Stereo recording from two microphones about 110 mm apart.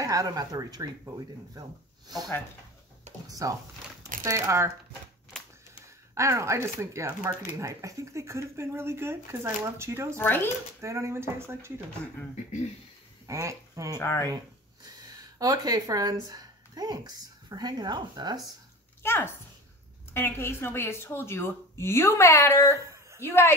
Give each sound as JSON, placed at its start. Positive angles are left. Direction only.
{"t": 0.0, "sound": "speech", "side_deg": -30}
{"t": 3.3, "sound": "speech", "side_deg": -35}
{"t": 6.1, "sound": "speech", "side_deg": -25}
{"t": 10.1, "sound": "speech", "side_deg": 20}
{"t": 10.8, "sound": "speech", "side_deg": -25}
{"t": 13.3, "sound": "speech", "side_deg": -25}
{"t": 13.9, "sound": "speech", "side_deg": 25}
{"t": 14.3, "sound": "a sound", "side_deg": -35}
{"t": 16.3, "sound": "a woman's voice", "side_deg": -35}
{"t": 19.0, "sound": "speech", "side_deg": 20}
{"t": 22.8, "sound": "a sound", "side_deg": -30}
{"t": 23.2, "sound": "speech", "side_deg": 20}